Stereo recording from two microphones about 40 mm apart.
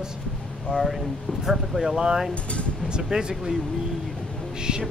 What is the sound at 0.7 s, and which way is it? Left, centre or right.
Speech, centre.